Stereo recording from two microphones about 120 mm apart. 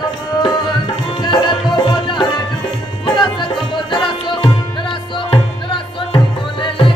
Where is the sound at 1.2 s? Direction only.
40° left (ahead or behind).